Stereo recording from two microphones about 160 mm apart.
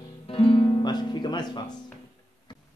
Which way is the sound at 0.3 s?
35° left (ahead or behind).